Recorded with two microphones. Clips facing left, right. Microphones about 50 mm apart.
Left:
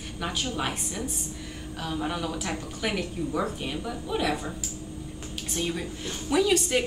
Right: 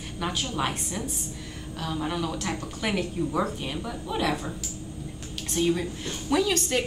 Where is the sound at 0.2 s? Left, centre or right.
Centre.